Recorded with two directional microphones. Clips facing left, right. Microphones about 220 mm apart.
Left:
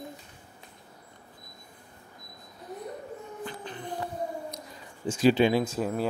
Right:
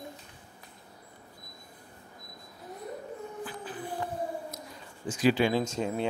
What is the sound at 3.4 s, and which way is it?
Dog, 5° right (ahead or behind).